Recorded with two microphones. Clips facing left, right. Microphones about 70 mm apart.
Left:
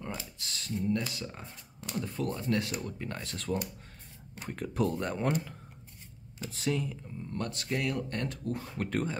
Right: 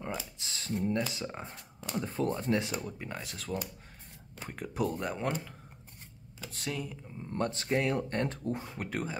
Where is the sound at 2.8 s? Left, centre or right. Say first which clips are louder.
Left 1 dB; centre.